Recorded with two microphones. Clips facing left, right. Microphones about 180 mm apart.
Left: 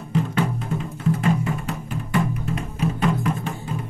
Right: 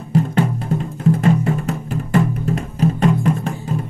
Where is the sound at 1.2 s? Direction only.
40° right (ahead or behind).